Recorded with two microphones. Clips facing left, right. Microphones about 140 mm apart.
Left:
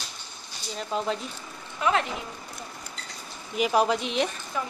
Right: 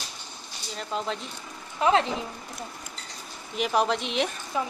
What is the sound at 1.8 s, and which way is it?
Speech, 30° right (ahead or behind).